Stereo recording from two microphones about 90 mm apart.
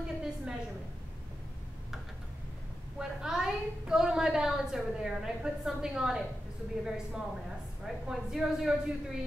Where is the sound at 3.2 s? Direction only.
10° right (ahead or behind).